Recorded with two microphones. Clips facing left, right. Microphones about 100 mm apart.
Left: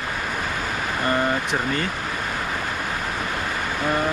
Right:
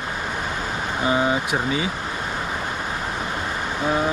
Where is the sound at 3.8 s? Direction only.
5° right (ahead or behind).